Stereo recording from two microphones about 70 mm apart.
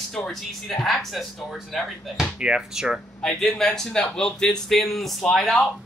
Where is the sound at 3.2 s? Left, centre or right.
Centre.